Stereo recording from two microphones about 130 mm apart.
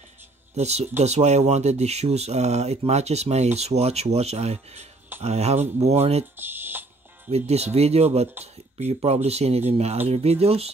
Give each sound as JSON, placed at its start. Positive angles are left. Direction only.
{"t": 0.6, "sound": "speech", "side_deg": -60}
{"t": 6.3, "sound": "a sound", "side_deg": -15}
{"t": 7.2, "sound": "speech", "side_deg": -55}